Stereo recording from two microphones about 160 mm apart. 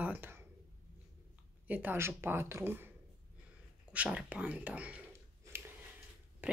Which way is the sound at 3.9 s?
5° right (ahead or behind).